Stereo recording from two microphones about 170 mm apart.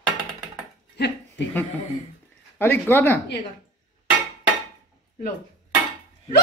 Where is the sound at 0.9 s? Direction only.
80° left.